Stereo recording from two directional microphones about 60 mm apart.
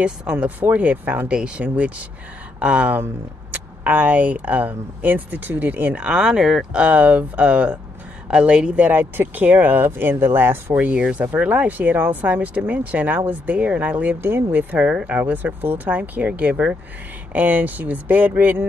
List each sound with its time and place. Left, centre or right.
0.0 s speech: centre
5.9 s speech: centre; by 10.9 s right
11.0 s speech: centre